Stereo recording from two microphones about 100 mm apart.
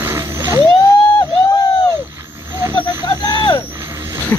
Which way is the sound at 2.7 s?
45° left (ahead or behind).